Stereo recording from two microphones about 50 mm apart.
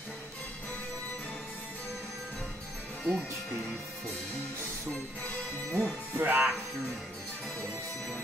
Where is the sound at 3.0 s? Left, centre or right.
Centre.